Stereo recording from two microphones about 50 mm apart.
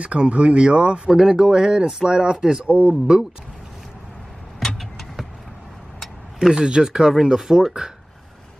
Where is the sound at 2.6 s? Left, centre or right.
Right.